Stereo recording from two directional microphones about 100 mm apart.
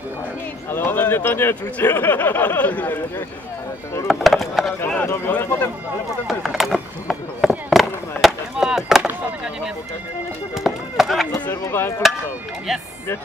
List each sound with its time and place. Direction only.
0.7 s speech: 20° left (ahead or behind)
4.1 s chop: centre (ahead or behind)
5.0 s speech: 25° left (ahead or behind)
6.2 s chop: centre (ahead or behind)
10.5 s a sound: centre (ahead or behind)
11.6 s speech: 25° left (ahead or behind)